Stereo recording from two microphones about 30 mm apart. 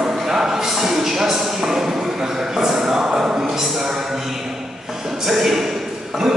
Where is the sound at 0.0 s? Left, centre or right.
Centre.